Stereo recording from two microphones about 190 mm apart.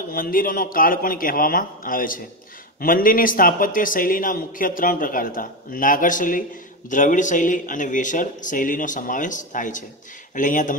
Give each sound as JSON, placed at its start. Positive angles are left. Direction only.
{"t": 0.1, "sound": "a man's voice", "side_deg": 50}